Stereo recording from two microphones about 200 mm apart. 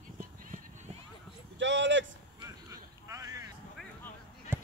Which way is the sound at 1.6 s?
65° right (ahead or behind).